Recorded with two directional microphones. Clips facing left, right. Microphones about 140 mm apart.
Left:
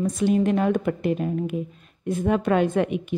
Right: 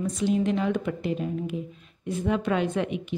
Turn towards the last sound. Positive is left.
turn(degrees=50)  # may be behind; listen again after turning